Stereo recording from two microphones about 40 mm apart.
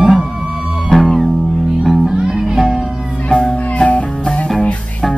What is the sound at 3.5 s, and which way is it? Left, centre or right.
Music, left.